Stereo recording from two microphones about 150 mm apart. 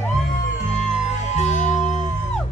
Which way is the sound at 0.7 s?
50° left (ahead or behind).